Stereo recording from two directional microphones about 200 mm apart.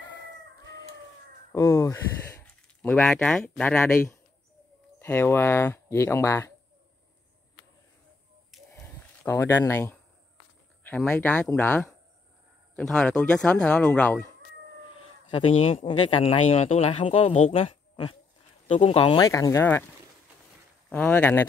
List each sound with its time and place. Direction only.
1.5 s speech: 15° left (ahead or behind)
8.5 s a sound: centre (ahead or behind)
9.3 s speech: 10° left (ahead or behind)
15.3 s speech: 25° left (ahead or behind)
19.2 s speech: 15° left (ahead or behind)
20.9 s speech: 10° left (ahead or behind)